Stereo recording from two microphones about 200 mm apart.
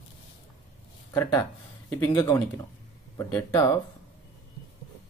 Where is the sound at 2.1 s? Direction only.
15° left (ahead or behind).